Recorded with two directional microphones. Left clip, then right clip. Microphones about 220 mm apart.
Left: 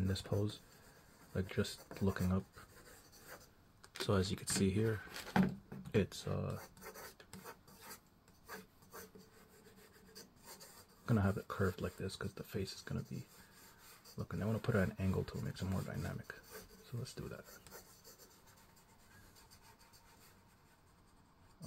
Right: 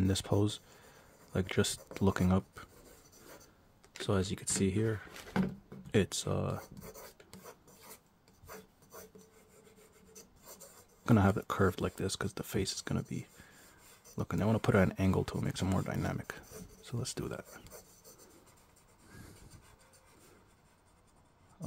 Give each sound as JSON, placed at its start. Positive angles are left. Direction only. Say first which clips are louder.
{"t": 0.0, "sound": "speech", "louder": "right 8 dB", "side_deg": -40}
{"t": 4.1, "sound": "speech", "louder": "right 3 dB", "side_deg": -20}
{"t": 5.9, "sound": "speech", "louder": "right 5 dB", "side_deg": -30}
{"t": 11.1, "sound": "speech", "louder": "right 9 dB", "side_deg": -40}